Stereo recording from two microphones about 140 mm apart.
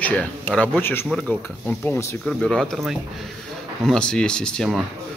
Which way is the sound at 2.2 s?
5° left (ahead or behind).